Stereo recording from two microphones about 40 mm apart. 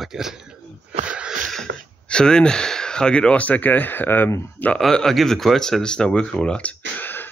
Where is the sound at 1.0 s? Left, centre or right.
Right.